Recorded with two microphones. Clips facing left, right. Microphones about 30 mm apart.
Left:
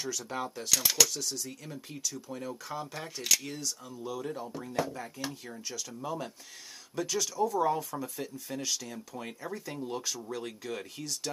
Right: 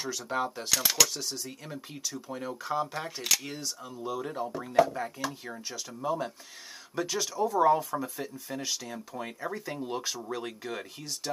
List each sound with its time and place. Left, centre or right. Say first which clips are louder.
0.0 s speech: right 4 dB; centre